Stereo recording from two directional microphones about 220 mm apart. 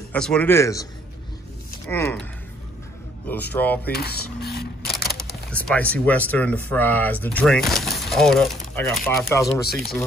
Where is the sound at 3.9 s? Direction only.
45° left (ahead or behind).